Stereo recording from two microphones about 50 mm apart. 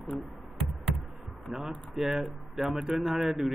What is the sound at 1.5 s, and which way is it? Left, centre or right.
A man's voice, centre.